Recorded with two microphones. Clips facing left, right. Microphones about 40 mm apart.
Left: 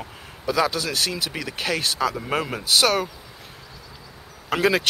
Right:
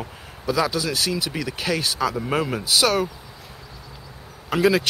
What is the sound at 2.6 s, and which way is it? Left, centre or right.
Speech, left.